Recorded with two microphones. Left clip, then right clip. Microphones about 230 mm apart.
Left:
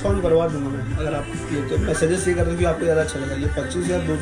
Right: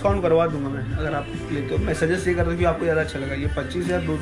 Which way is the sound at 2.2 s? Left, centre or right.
Right.